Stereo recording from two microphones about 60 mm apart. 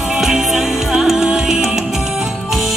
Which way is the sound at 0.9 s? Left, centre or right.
Centre.